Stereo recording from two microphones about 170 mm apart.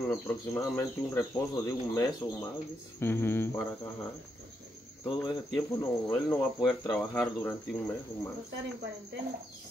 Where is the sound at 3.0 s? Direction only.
15° left (ahead or behind).